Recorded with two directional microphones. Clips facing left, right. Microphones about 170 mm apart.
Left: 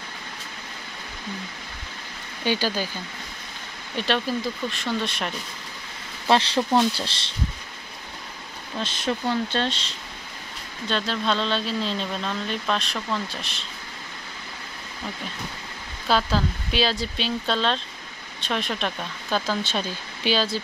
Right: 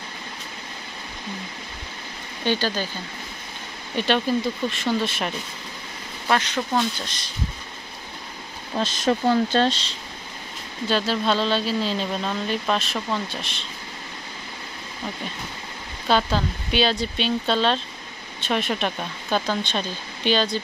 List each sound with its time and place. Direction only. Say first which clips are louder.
2.4 s speech: right 1 dB; 10° left (ahead or behind)
3.9 s speech: right 3 dB; centre (ahead or behind)
6.2 s speech: left 3 dB; 30° left (ahead or behind)
8.7 s speech: right 5 dB; 40° right (ahead or behind)
10.9 s speech: right 3 dB; 5° right (ahead or behind)
16.1 s speech: right 1 dB; centre (ahead or behind)